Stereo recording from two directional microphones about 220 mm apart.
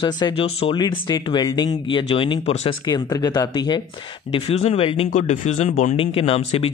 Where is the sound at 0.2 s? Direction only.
25° left (ahead or behind).